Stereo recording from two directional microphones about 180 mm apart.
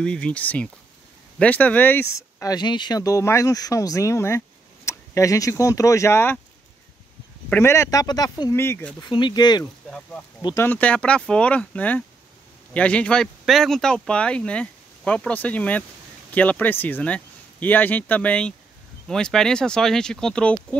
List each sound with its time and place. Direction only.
0.0 s speech: 5° left (ahead or behind)
7.4 s speech: 10° left (ahead or behind)
9.0 s speech: 25° left (ahead or behind)
9.8 s speech: 5° left (ahead or behind)
10.4 s speech: 15° left (ahead or behind)